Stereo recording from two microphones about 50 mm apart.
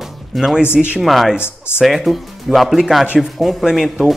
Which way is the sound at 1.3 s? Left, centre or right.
Left.